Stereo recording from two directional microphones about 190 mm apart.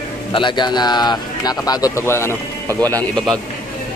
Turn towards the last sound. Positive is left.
turn(degrees=10)  # may be behind; listen again after turning